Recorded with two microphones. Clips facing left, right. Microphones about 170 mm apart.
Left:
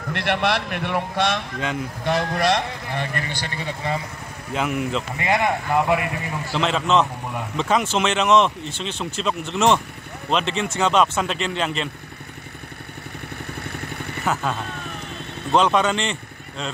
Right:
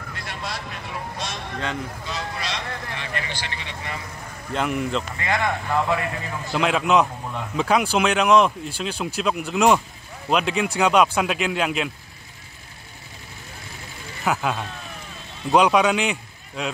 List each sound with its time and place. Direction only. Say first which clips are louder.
0.1 s a man's voice: left 12 dB; 75° left (ahead or behind)
2.0 s speech: left 14 dB; 55° left (ahead or behind)
4.5 s speech: even; 5° left (ahead or behind)
5.1 s speech: left 3 dB; 20° left (ahead or behind)
6.5 s speech: right 1 dB; 5° right (ahead or behind)
13.7 s vehicle: left 7 dB; 65° left (ahead or behind)
14.2 s speech: right 1 dB; centre (ahead or behind)